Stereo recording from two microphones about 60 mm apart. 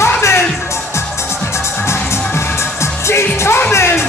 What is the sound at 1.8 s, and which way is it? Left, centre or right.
Music, left.